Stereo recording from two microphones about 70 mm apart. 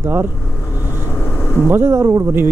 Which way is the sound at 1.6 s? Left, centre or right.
Right.